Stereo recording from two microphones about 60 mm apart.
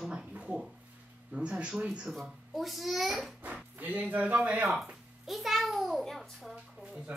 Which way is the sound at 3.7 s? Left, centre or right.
Right.